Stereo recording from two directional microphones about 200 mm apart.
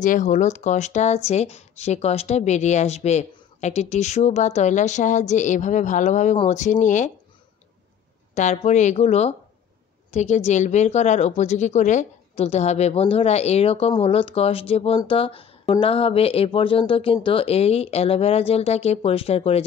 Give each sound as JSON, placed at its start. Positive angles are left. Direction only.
{"t": 0.0, "sound": "speech", "side_deg": 40}
{"t": 8.4, "sound": "speech", "side_deg": 35}